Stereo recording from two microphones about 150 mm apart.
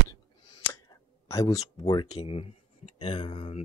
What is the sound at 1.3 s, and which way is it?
Speech, 20° left (ahead or behind).